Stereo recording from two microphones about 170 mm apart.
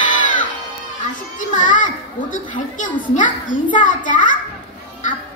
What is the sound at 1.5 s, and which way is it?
A woman's voice, 50° left (ahead or behind).